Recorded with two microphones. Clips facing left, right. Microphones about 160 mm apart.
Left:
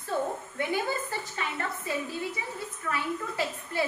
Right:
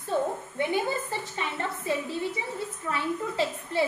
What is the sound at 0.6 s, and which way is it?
A woman's voice, 20° right (ahead or behind).